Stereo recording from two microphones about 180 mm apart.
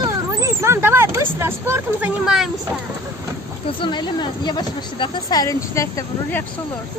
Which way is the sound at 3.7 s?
25° left (ahead or behind).